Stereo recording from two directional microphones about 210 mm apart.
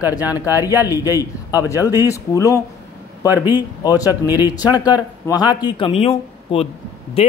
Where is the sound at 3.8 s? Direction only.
15° left (ahead or behind).